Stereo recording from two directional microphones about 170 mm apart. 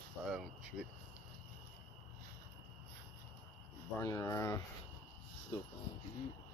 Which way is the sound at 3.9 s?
20° left (ahead or behind).